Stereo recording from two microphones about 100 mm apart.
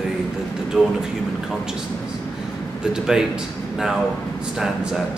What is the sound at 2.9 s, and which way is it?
Speech, 5° right (ahead or behind).